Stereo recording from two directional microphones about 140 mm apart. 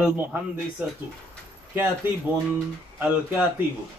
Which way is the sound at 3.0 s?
10° right (ahead or behind).